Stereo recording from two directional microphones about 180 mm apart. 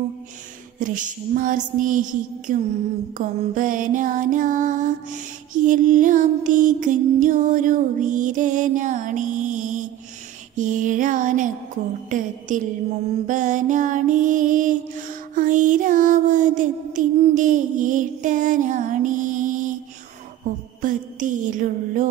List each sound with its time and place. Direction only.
0.7 s music: 45° right (ahead or behind)
20.8 s music: 45° right (ahead or behind)